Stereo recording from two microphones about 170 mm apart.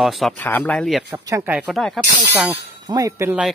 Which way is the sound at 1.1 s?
15° right (ahead or behind).